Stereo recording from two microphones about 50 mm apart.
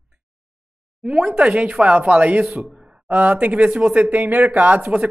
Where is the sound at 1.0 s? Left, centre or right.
Right.